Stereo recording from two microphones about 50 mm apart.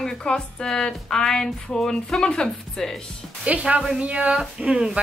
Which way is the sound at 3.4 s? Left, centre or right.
Right.